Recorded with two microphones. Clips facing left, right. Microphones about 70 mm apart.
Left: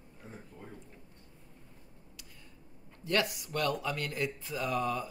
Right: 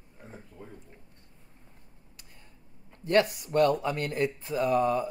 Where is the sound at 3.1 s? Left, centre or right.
Right.